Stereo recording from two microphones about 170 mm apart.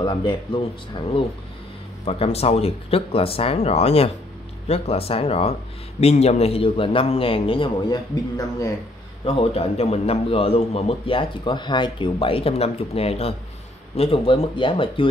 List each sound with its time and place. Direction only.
0.0 s a man's voice: 30° left (ahead or behind)
9.2 s a man's voice: 35° left (ahead or behind)